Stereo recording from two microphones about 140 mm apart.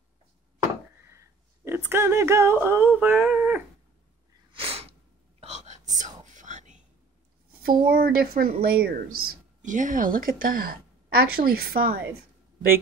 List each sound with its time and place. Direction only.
1.0 s speech: 20° right (ahead or behind)
4.5 s sneeze: 40° right (ahead or behind)
5.4 s whispering: 55° right (ahead or behind)
7.6 s a woman's voice: 90° right
9.6 s a woman's voice: 65° right (ahead or behind); by 12.0 s 90° right